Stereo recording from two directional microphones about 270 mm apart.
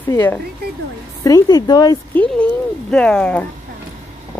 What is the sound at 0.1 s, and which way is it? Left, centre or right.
Speech, centre.